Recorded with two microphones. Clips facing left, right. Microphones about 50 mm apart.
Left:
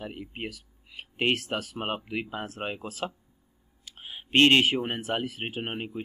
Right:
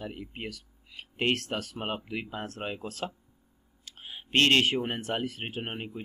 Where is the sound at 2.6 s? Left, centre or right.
Left.